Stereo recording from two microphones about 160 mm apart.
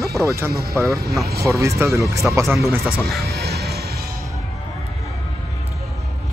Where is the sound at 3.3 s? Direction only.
80° right.